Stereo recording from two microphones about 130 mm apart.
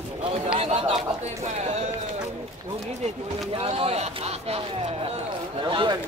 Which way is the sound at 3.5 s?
50° right (ahead or behind).